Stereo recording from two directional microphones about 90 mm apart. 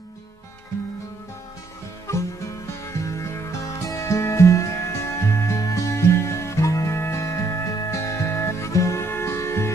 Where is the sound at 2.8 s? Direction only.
35° left (ahead or behind).